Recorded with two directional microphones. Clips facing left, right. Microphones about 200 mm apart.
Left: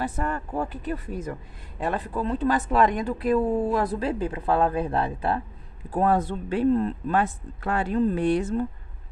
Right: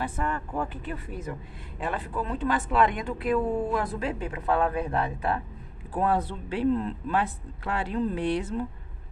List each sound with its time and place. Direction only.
0.0 s speech: 40° left (ahead or behind)
5.9 s speech: 45° left (ahead or behind)